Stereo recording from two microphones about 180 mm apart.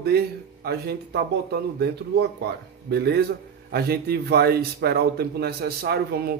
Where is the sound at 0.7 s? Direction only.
65° right (ahead or behind).